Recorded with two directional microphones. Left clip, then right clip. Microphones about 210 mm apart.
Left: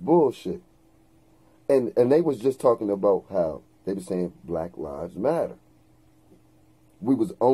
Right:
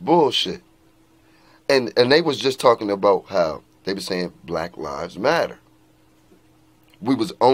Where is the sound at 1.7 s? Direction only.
20° right (ahead or behind).